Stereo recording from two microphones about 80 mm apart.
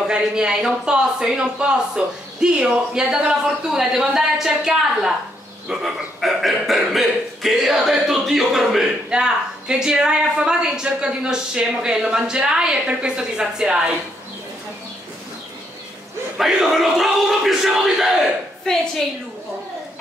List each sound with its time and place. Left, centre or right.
0.0 s speech: centre
16.3 s speech: centre
18.7 s a woman's voice: centre